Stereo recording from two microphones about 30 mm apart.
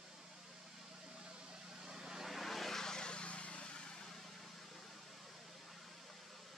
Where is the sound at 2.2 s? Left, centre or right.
Centre.